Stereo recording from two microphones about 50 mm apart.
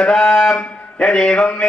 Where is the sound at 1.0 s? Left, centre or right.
Centre.